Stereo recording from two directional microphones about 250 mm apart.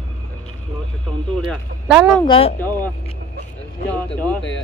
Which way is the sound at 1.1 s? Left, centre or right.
Centre.